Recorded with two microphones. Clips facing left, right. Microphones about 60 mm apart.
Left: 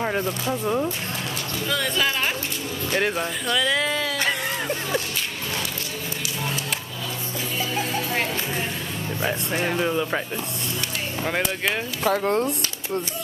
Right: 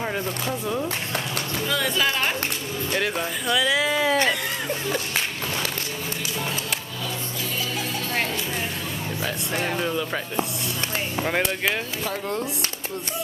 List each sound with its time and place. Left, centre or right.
0.5 s speech: centre
1.7 s speech: centre
3.4 s speech: centre
9.5 s speech: centre
11.1 s speech: centre
12.0 s speech: left